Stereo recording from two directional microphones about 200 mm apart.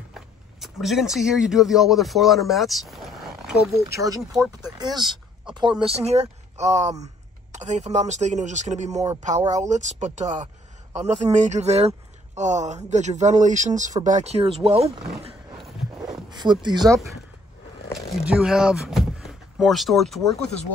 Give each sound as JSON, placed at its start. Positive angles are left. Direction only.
{"t": 0.1, "sound": "speech", "side_deg": 0}
{"t": 4.7, "sound": "speech", "side_deg": -20}
{"t": 8.9, "sound": "speech", "side_deg": -15}
{"t": 9.5, "sound": "speech", "side_deg": -35}
{"t": 16.3, "sound": "speech", "side_deg": -20}
{"t": 18.2, "sound": "speech", "side_deg": -5}